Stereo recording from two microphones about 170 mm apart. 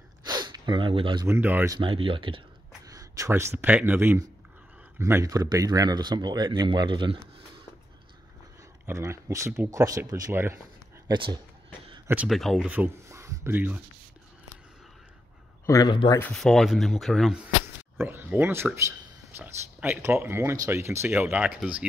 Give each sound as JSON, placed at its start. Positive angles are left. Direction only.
{"t": 0.2, "sound": "gasp", "side_deg": -25}
{"t": 1.2, "sound": "speech", "side_deg": -10}
{"t": 1.8, "sound": "speech", "side_deg": -30}
{"t": 2.9, "sound": "speech", "side_deg": -20}
{"t": 8.8, "sound": "speech", "side_deg": -15}
{"t": 11.1, "sound": "speech", "side_deg": -30}
{"t": 12.3, "sound": "speech", "side_deg": 0}
{"t": 12.6, "sound": "speech", "side_deg": -10}
{"t": 15.6, "sound": "a man's voice", "side_deg": 20}
{"t": 16.2, "sound": "speech", "side_deg": 0}
{"t": 17.9, "sound": "speech", "side_deg": -10}